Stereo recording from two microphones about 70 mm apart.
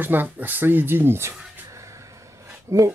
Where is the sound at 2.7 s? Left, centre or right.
Right.